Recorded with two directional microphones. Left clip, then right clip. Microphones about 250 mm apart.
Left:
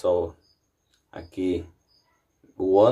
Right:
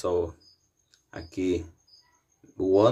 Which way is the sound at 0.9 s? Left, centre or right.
Centre.